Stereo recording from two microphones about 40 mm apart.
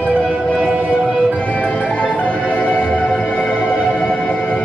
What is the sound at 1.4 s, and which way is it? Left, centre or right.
Music, left.